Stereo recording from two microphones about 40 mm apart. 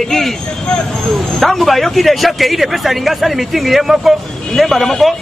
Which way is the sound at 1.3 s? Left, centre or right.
Centre.